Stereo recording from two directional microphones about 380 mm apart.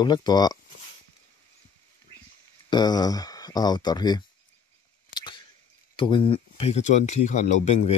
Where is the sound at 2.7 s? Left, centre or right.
Centre.